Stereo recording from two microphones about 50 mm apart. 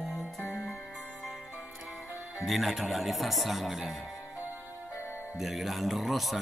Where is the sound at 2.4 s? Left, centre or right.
Centre.